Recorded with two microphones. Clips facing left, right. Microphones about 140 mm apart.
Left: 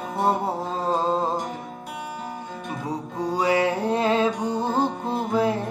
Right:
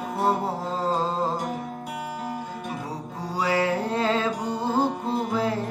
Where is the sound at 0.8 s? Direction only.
20° left (ahead or behind).